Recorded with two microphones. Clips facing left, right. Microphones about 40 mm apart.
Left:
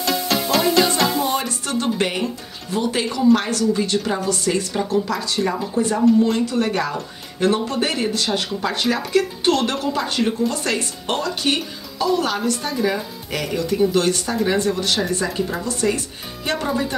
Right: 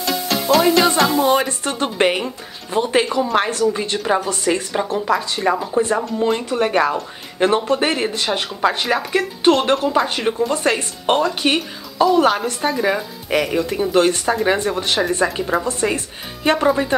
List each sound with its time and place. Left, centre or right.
0.0 s music: centre
1.2 s music: right
2.1 s a sound: right
3.3 s speech: right